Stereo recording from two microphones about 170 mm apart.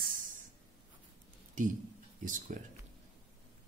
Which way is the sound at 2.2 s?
50° right (ahead or behind).